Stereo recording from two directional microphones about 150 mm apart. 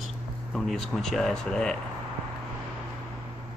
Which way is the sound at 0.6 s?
Centre (ahead or behind).